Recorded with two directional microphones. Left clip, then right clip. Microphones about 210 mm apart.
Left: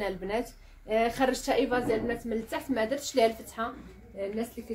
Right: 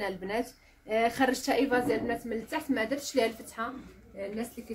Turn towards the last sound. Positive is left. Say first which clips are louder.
# left 3 dB
turn(degrees=0)  # may be behind; listen again after turning